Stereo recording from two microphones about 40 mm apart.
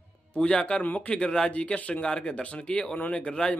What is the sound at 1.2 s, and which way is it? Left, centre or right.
Speech, left.